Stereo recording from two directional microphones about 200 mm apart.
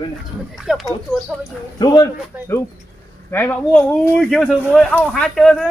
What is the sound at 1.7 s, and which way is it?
Speech, 20° left (ahead or behind).